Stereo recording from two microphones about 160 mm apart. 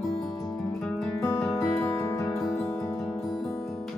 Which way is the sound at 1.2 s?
20° left (ahead or behind).